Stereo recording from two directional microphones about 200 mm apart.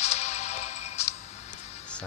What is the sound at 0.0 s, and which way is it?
Music, 35° left (ahead or behind).